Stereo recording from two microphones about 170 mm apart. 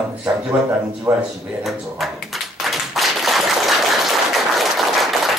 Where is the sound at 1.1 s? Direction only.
20° right (ahead or behind).